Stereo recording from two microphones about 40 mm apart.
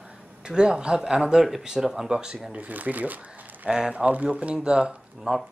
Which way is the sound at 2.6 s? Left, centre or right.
Right.